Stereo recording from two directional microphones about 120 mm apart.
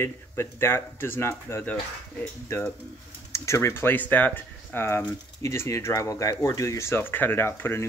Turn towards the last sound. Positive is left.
turn(degrees=20)  # may be behind; listen again after turning